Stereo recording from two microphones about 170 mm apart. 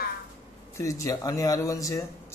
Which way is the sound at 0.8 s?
20° left (ahead or behind).